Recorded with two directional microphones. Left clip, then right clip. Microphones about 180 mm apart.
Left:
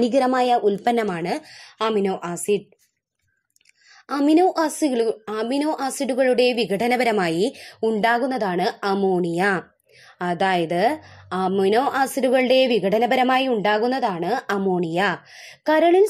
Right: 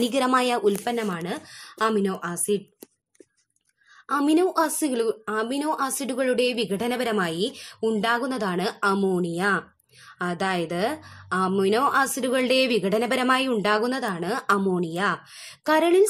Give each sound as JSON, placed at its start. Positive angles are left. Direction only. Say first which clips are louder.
{"t": 0.0, "sound": "speech", "louder": "left 3 dB", "side_deg": 10}
{"t": 0.8, "sound": "a woman's voice", "louder": "left 6 dB", "side_deg": 25}
{"t": 4.2, "sound": "speech", "louder": "left 4 dB", "side_deg": 0}
{"t": 7.8, "sound": "speech", "louder": "left 4 dB", "side_deg": 5}
{"t": 9.2, "sound": "a woman's voice", "louder": "left 3 dB", "side_deg": 15}
{"t": 14.9, "sound": "a woman's voice", "louder": "left 4 dB", "side_deg": 10}
{"t": 15.3, "sound": "speech", "louder": "left 3 dB", "side_deg": 0}